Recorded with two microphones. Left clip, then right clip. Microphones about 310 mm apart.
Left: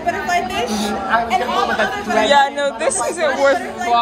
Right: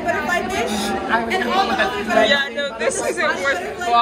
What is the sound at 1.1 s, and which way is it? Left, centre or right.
Speech, left.